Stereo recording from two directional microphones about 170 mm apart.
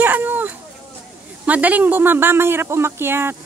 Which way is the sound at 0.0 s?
10° right (ahead or behind).